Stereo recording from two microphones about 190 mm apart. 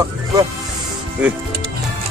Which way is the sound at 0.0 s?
20° right (ahead or behind).